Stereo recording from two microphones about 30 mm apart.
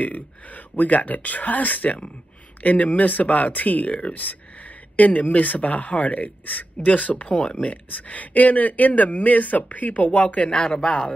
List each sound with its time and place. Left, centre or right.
0.7 s speech: left
4.9 s speech: left
6.9 s speech: left
10.7 s speech: left